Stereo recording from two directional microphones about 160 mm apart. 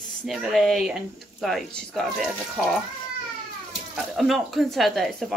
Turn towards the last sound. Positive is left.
turn(degrees=0)  # may be behind; listen again after turning